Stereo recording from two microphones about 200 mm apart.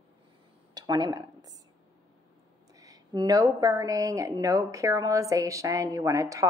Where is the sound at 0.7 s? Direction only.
20° right (ahead or behind).